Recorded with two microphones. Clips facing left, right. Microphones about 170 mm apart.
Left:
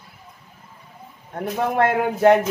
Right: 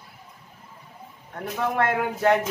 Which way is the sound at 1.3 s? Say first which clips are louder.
Left 4 dB; 20° left (ahead or behind).